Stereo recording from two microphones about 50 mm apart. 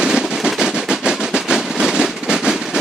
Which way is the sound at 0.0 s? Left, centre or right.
Centre.